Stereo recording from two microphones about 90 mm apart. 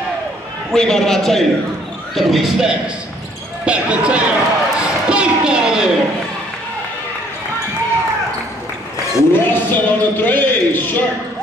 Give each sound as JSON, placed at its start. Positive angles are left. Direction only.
{"t": 0.7, "sound": "a man's voice", "side_deg": 5}
{"t": 3.6, "sound": "a sound", "side_deg": -15}
{"t": 9.3, "sound": "a man's voice", "side_deg": 25}